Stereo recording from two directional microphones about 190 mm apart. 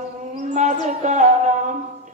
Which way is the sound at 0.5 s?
40° right (ahead or behind).